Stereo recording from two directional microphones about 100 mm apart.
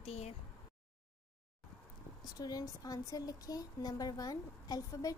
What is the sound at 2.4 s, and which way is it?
Speech, 40° left (ahead or behind).